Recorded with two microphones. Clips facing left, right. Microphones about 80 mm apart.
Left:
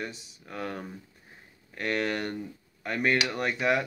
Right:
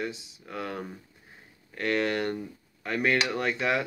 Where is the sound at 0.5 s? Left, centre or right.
Centre.